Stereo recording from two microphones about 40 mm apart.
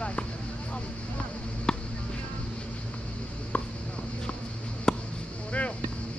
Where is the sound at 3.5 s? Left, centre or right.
Left.